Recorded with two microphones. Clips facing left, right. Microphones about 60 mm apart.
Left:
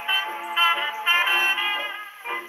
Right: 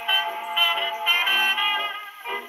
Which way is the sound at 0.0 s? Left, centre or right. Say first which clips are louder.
Right 1 dB; left.